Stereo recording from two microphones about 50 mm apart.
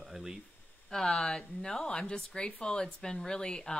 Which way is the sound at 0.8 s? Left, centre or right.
Centre.